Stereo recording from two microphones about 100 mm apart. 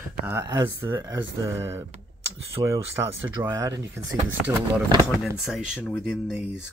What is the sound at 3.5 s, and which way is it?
Speech, 40° right (ahead or behind).